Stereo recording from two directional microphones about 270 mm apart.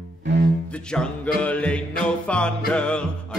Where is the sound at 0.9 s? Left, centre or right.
Centre.